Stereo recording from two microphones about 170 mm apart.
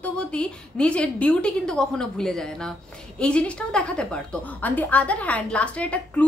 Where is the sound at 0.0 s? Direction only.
5° left (ahead or behind).